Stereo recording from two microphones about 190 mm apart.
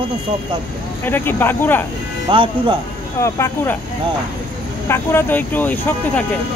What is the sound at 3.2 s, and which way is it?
Speech, 15° left (ahead or behind).